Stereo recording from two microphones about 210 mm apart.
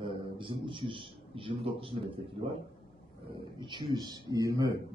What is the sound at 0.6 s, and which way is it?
A man's voice, 25° right (ahead or behind).